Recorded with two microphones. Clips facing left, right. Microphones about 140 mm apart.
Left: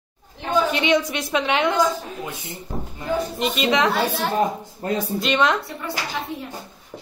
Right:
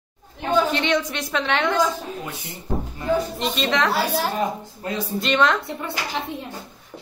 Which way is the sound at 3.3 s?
5° left (ahead or behind).